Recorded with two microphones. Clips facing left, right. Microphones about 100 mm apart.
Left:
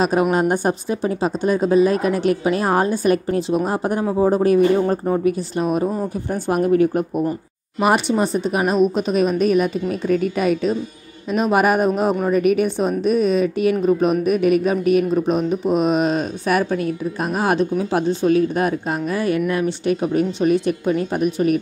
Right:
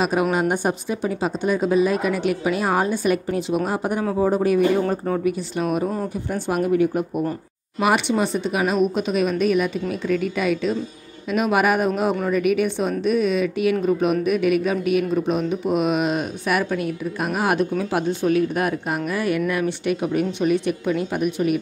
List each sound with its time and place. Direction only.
0.0 s a woman's voice: 35° left (ahead or behind)
4.8 s speech: 15° left (ahead or behind)
5.6 s a woman's voice: 35° left (ahead or behind)